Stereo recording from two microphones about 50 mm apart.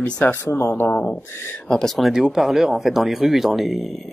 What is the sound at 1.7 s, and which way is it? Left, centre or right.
Speech, centre.